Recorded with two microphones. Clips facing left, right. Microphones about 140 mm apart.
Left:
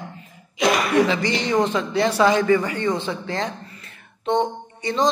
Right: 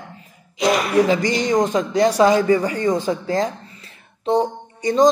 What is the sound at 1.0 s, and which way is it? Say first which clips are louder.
A man's voice: right 3 dB; 45° right (ahead or behind).